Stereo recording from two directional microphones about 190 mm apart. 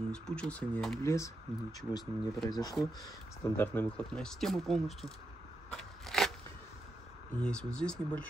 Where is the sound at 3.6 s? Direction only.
10° left (ahead or behind).